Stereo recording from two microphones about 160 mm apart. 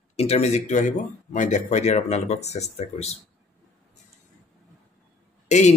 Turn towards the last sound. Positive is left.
turn(degrees=45)  # may be behind; listen again after turning